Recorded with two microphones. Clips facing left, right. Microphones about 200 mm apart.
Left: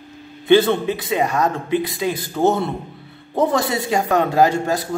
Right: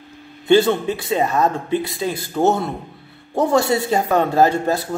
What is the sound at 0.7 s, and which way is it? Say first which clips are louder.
A man's voice: even; 15° left (ahead or behind).